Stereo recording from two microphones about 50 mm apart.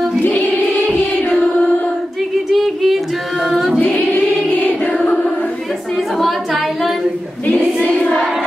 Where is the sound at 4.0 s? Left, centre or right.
Left.